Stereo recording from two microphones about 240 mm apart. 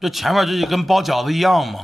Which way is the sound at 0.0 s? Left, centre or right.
Centre.